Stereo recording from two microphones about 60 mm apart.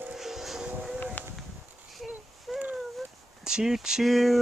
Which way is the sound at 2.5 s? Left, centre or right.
Centre.